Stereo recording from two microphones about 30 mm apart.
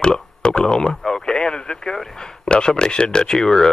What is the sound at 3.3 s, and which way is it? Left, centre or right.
Speech, centre.